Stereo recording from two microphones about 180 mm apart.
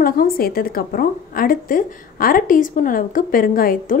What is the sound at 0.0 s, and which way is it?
A woman's voice, 55° left (ahead or behind).